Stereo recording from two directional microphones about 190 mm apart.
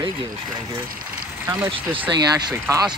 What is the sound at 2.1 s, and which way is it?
Speech, 20° right (ahead or behind).